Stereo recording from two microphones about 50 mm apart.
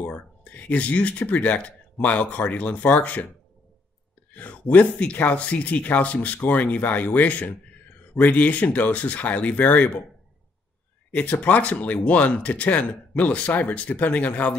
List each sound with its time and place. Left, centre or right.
0.0 s speech: left
4.3 s speech: left
11.1 s speech: left